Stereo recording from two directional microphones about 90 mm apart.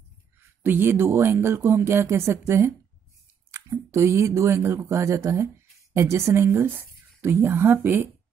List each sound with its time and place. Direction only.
0.6 s speech: 25° right (ahead or behind)